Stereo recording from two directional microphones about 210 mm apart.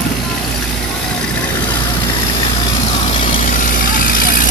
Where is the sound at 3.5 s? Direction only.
40° left (ahead or behind).